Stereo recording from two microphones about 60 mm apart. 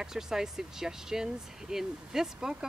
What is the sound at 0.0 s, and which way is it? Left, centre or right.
Speech, centre.